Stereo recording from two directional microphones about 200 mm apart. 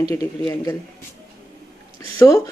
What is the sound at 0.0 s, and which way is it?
Speech, 20° left (ahead or behind).